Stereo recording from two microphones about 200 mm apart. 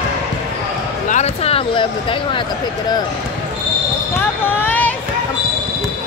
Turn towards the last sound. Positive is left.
turn(degrees=10)  # may be behind; listen again after turning